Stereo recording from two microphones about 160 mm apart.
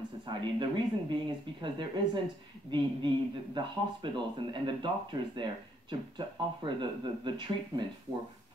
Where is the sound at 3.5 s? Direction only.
30° right (ahead or behind).